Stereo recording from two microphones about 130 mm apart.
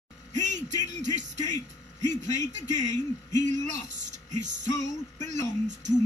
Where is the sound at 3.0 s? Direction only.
70° right (ahead or behind).